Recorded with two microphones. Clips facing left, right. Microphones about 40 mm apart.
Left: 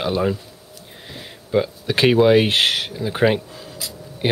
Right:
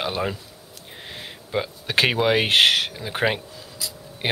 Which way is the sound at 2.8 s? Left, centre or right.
Centre.